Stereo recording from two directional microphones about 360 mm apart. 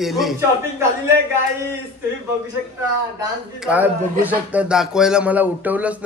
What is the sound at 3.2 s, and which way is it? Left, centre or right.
Speech, centre.